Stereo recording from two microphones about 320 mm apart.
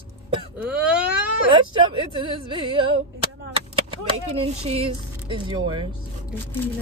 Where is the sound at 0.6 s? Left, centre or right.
Centre.